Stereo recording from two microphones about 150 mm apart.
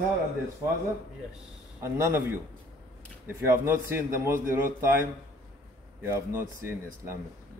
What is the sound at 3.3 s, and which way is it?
A man's voice, 15° right (ahead or behind).